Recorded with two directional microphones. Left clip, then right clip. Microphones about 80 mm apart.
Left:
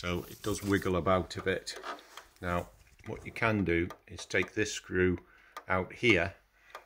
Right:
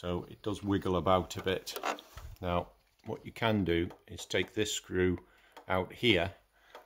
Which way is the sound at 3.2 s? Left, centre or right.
Right.